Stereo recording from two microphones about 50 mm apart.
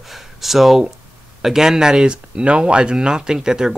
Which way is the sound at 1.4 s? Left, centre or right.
Centre.